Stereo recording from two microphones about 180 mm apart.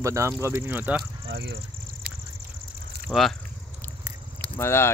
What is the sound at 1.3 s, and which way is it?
Speech, 90° right.